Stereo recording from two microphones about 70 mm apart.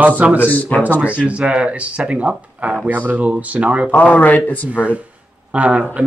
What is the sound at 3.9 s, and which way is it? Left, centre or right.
Speech, left.